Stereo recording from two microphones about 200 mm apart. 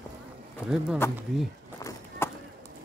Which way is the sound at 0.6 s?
5° right (ahead or behind).